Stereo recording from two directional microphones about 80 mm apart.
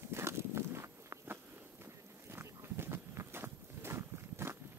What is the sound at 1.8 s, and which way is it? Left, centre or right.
Boat, right.